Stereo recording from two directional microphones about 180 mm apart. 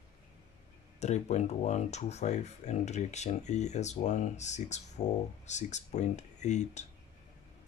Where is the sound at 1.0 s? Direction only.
40° left (ahead or behind).